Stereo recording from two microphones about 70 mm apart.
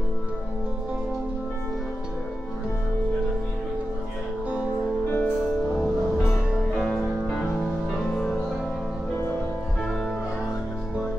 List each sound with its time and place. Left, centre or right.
5.0 s music: left
6.8 s music: centre
8.1 s music: centre